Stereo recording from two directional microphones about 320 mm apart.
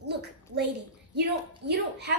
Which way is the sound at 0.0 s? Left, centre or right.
Right.